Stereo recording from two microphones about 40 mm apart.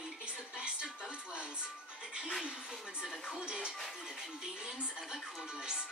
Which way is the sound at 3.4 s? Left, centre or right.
Right.